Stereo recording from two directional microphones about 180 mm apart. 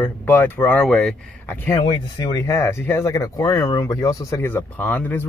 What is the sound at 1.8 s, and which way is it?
Speech, 20° left (ahead or behind).